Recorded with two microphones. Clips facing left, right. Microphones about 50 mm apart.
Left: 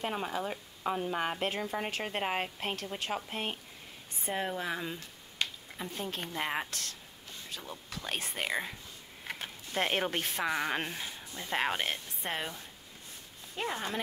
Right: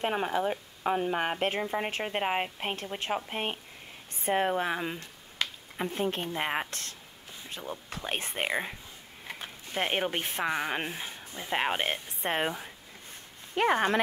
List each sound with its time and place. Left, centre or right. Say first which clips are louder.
0.0 s speech: right 6 dB; right
4.2 s speech: right 7 dB; right
6.3 s speech: right 3 dB; right
7.4 s a sound: right 5 dB; right
8.0 s speech: right 3 dB; right
10.6 s speech: right 1 dB; centre; by 12.5 s right
13.6 s speech: right 10 dB; right